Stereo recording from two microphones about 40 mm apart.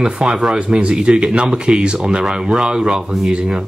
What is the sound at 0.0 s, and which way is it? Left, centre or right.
Speech, right.